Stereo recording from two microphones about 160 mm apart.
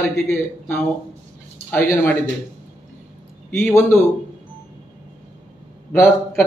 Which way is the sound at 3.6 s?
15° left (ahead or behind).